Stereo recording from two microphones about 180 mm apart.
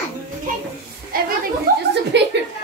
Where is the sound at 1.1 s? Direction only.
55° right (ahead or behind).